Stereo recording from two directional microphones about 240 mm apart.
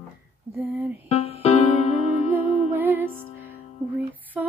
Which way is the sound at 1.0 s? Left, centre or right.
Left.